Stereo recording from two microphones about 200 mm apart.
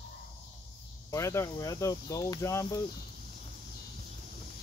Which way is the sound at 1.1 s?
15° left (ahead or behind).